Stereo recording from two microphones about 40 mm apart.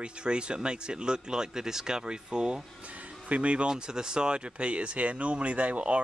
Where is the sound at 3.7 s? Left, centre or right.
Centre.